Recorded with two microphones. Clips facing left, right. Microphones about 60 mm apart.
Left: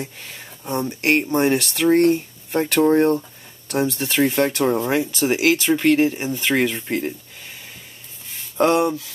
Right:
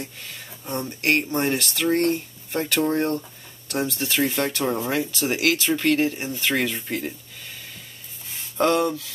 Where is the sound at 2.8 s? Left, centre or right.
Left.